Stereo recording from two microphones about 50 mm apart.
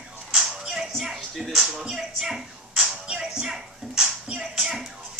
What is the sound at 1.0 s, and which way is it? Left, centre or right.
Music, centre.